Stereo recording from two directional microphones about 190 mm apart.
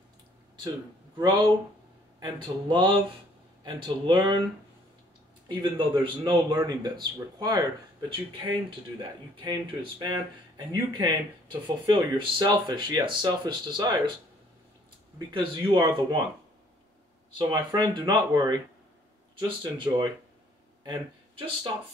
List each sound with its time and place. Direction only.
0.7 s speech: 25° right (ahead or behind)
5.5 s speech: 25° right (ahead or behind)
9.4 s speech: 25° right (ahead or behind)
15.1 s speech: 25° right (ahead or behind)
17.4 s speech: 25° right (ahead or behind)